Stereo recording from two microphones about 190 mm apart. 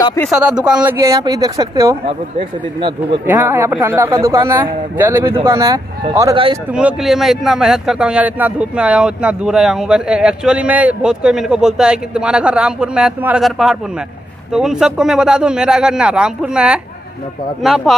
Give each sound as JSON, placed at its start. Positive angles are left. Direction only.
{"t": 0.3, "sound": "speech", "side_deg": -5}
{"t": 0.9, "sound": "a man's voice", "side_deg": -15}
{"t": 3.3, "sound": "a man's voice", "side_deg": -10}
{"t": 6.3, "sound": "a man's voice", "side_deg": -30}
{"t": 6.7, "sound": "speech", "side_deg": -5}